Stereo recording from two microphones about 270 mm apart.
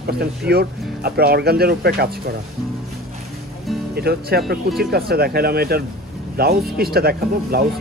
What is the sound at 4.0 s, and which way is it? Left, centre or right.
Speech, right.